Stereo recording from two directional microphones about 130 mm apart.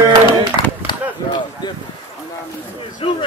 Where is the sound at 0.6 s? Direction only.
40° left (ahead or behind).